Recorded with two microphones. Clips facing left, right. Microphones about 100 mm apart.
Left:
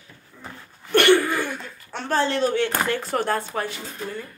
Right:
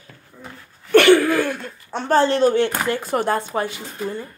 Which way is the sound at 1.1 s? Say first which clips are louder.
Right 5 dB; 90° right.